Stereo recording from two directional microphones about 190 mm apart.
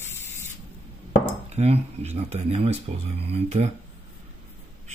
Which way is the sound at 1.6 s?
35° right (ahead or behind).